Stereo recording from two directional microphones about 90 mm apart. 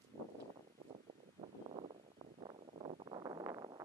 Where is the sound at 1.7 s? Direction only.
85° right.